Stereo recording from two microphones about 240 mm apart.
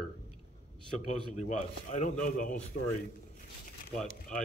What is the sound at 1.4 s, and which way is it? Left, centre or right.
Speech, left.